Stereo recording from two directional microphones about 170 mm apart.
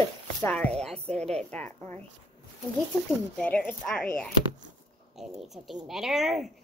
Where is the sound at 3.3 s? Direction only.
10° left (ahead or behind).